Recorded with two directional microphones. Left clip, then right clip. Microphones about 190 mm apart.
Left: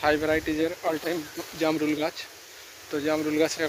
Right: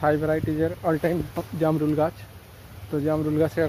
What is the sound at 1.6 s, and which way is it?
Speech, 20° right (ahead or behind).